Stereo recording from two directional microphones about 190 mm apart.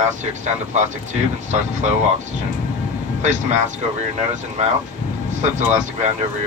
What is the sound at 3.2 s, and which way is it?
Speech, 40° right (ahead or behind).